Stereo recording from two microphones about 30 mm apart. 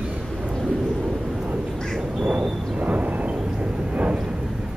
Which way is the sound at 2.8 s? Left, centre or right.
Right.